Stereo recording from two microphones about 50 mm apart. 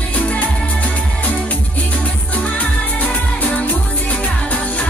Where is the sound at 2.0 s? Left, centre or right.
Left.